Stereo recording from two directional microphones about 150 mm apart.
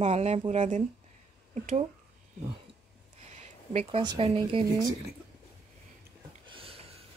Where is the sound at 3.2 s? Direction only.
50° right (ahead or behind).